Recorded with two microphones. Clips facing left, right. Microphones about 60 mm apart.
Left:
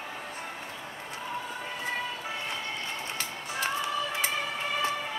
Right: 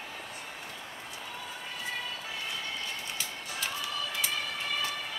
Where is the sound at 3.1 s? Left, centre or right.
Left.